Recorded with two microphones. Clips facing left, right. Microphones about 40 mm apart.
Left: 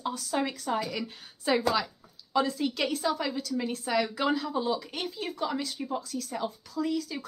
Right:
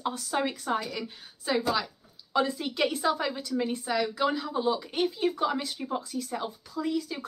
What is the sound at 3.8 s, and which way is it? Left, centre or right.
Speech, centre.